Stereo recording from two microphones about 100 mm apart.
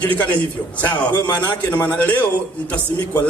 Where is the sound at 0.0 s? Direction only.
15° left (ahead or behind).